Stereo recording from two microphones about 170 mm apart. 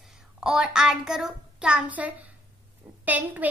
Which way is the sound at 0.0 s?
Centre (ahead or behind).